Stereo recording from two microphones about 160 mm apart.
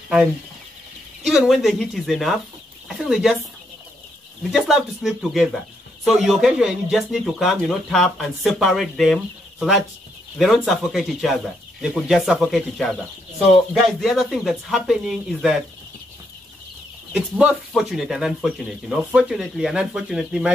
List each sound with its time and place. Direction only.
1.2 s speech: 5° right (ahead or behind)
4.4 s speech: centre (ahead or behind)
17.1 s speech: 5° right (ahead or behind)